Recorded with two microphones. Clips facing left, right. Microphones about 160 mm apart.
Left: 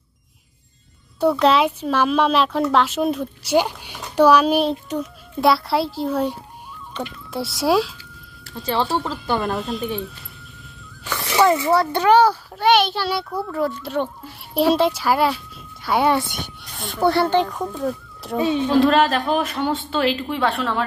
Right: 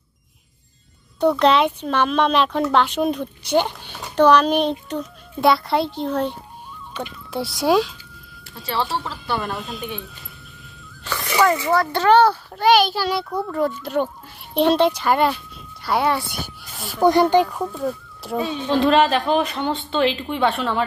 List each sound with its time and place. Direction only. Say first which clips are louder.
1.2 s a child's voice: even; 5° left (ahead or behind)
8.7 s speech: left 2 dB; 25° left (ahead or behind)
9.6 s a child's voice: left 5 dB; centre (ahead or behind)
11.1 s a sound: left 1 dB; 10° left (ahead or behind)
11.7 s speech: left 1 dB; 30° left (ahead or behind)
12.0 s a child's voice: right 1 dB; 10° left (ahead or behind)
12.6 s a child's voice: right 1 dB; centre (ahead or behind)